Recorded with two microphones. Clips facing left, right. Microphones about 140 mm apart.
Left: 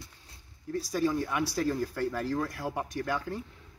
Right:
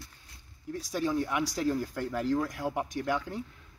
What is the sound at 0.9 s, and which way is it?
Speech, 10° right (ahead or behind).